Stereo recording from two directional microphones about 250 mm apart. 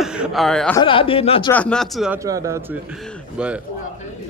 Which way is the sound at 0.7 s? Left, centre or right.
Left.